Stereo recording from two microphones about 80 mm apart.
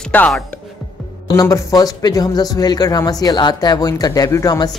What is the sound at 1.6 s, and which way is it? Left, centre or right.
Speech, left.